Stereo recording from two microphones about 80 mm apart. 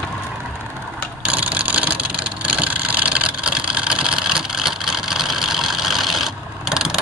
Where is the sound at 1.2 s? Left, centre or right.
Centre.